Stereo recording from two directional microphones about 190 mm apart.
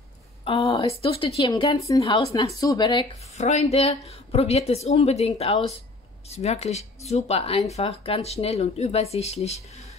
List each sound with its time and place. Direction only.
0.5 s speech: 30° left (ahead or behind)
3.3 s speech: 35° left (ahead or behind)